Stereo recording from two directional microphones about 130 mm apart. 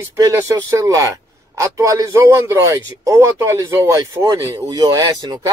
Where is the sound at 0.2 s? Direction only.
25° right (ahead or behind).